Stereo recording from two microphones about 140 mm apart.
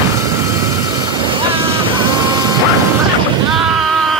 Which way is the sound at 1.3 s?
40° right (ahead or behind).